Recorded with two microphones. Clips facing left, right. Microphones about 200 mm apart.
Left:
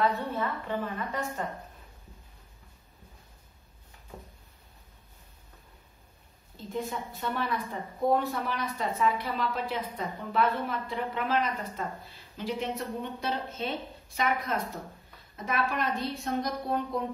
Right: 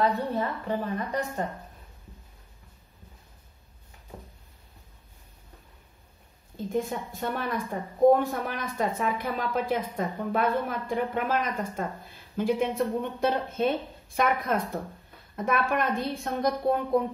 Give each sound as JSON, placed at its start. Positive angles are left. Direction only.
{"t": 0.0, "sound": "a woman's voice", "side_deg": -35}
{"t": 6.5, "sound": "speech", "side_deg": -45}